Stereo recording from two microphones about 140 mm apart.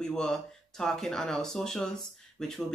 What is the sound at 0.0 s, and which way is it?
Speech, 5° left (ahead or behind).